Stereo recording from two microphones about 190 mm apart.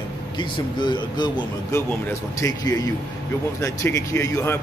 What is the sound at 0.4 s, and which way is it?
Speech, 25° left (ahead or behind).